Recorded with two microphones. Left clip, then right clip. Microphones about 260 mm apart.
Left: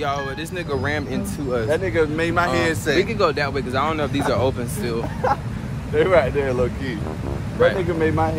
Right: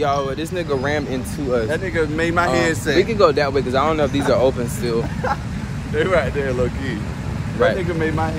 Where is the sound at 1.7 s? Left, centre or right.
Left.